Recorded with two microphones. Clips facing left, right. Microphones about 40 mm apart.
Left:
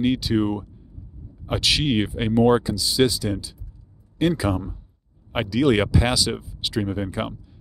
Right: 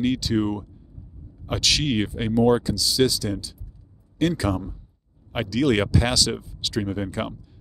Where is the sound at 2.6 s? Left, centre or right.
Centre.